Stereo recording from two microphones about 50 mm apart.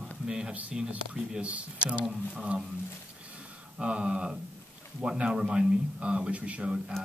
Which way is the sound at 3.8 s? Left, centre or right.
Right.